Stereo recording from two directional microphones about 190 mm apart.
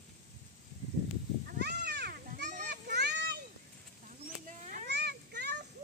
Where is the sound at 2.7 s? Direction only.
60° right (ahead or behind).